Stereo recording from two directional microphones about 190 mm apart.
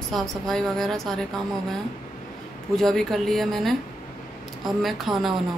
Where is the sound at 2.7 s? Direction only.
Centre (ahead or behind).